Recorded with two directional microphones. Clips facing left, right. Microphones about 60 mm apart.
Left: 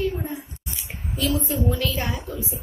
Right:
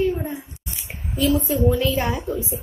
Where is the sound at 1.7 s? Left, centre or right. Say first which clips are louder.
Right 5 dB; right.